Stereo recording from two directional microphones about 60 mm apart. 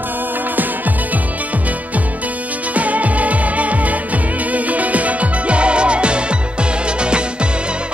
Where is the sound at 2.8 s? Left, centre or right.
Right.